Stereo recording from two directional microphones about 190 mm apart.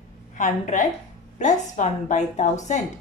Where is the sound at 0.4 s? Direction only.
40° left (ahead or behind).